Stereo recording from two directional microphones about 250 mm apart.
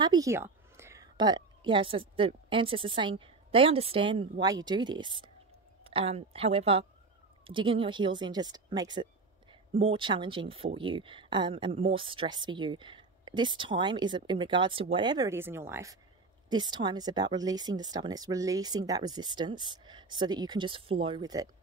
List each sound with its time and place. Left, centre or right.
0.0 s a woman's voice: centre